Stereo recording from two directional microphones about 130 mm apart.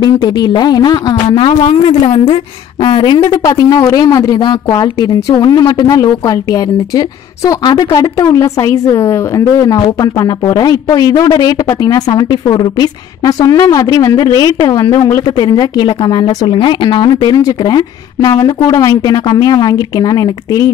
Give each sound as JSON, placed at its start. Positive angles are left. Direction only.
{"t": 0.0, "sound": "a woman's voice", "side_deg": 35}